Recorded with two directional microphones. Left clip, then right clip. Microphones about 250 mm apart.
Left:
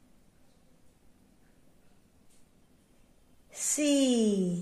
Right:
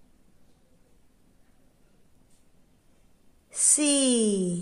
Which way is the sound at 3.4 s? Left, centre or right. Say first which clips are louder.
Right 3 dB; centre.